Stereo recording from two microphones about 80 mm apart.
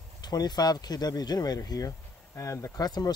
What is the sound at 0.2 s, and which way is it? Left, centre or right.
Speech, left.